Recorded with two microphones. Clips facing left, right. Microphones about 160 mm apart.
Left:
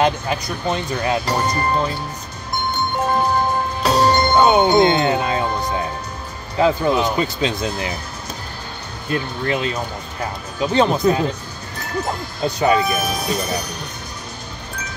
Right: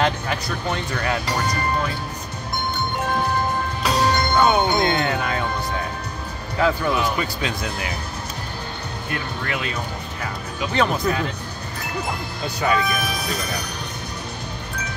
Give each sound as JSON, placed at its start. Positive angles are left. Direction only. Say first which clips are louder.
{"t": 0.0, "sound": "speech", "louder": "left 4 dB", "side_deg": 20}
{"t": 3.8, "sound": "music", "louder": "left 5 dB", "side_deg": 35}
{"t": 6.6, "sound": "speech", "louder": "left 4 dB", "side_deg": 25}
{"t": 9.1, "sound": "speech", "louder": "left 7 dB", "side_deg": 25}
{"t": 12.4, "sound": "speech", "louder": "left 5 dB", "side_deg": 25}